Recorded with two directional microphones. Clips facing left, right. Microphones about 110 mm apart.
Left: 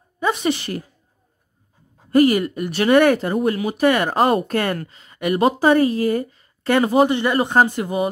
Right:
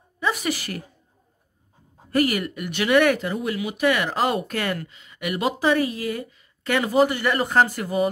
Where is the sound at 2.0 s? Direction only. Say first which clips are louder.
Left 7 dB; 30° left (ahead or behind).